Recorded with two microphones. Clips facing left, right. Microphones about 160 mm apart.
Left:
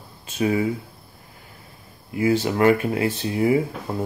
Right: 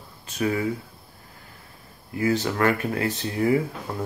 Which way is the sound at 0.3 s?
20° left (ahead or behind).